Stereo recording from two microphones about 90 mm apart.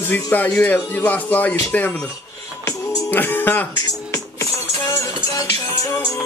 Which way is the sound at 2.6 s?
45° left (ahead or behind).